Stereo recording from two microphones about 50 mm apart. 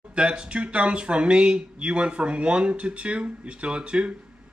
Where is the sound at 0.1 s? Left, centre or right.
Centre.